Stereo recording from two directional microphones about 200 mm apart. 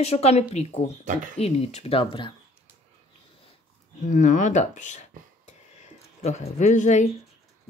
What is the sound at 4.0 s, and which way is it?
Speech, 40° left (ahead or behind).